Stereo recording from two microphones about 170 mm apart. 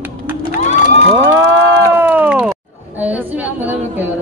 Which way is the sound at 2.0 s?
10° right (ahead or behind).